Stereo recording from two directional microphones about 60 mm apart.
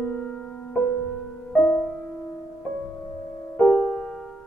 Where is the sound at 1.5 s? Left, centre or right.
Centre.